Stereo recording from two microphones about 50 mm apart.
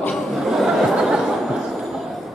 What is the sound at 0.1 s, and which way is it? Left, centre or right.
Chuckle, centre.